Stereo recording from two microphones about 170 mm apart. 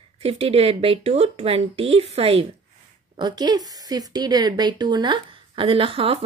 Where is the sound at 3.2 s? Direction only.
25° right (ahead or behind).